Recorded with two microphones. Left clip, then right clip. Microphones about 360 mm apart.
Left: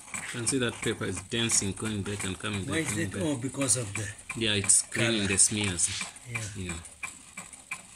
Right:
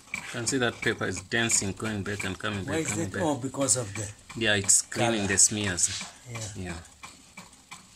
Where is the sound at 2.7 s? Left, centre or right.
Right.